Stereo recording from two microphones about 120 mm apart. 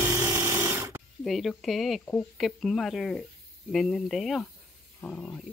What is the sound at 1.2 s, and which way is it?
Speech, centre (ahead or behind).